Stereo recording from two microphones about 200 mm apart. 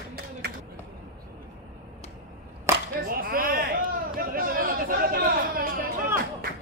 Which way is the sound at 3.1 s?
45° right (ahead or behind).